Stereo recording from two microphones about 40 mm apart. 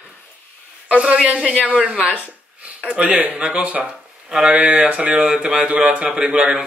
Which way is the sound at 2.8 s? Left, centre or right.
Right.